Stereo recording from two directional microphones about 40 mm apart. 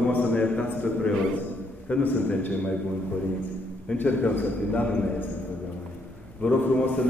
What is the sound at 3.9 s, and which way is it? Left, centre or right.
Speech, left.